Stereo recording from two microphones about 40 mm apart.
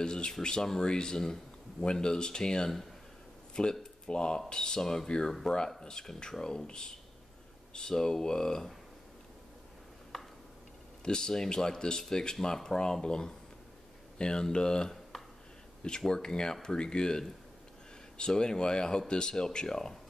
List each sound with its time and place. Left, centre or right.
0.0 s speech: centre
10.1 s tick-tock: centre
11.1 s speech: centre
16.1 s speech: centre